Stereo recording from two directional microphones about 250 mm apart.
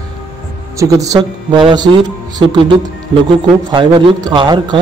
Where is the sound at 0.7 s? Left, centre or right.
Centre.